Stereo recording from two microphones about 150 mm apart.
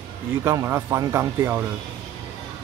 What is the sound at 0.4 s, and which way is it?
Speech, 20° right (ahead or behind).